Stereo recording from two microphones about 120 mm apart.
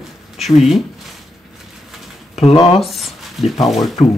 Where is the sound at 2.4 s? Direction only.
50° left (ahead or behind).